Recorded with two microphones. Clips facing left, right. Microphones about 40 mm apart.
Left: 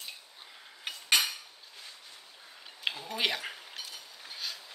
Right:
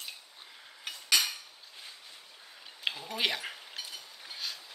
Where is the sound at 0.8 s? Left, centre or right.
Left.